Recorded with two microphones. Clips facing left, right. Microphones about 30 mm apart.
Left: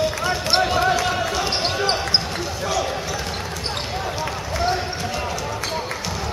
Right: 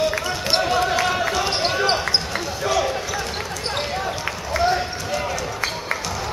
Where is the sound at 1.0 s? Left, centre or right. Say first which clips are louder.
Right 1 dB; centre.